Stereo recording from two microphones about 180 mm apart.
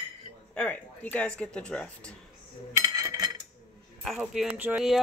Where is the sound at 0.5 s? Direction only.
5° left (ahead or behind).